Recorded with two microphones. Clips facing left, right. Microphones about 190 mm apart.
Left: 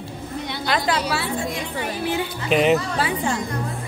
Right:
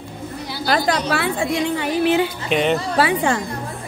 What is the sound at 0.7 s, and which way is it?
Speech, 45° right (ahead or behind).